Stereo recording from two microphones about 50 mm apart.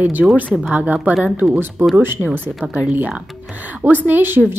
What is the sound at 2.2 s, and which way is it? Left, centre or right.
Speech, right.